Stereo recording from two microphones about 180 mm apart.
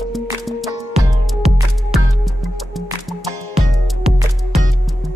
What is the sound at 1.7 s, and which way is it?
Music, centre (ahead or behind).